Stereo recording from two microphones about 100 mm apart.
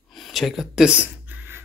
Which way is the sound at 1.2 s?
20° right (ahead or behind).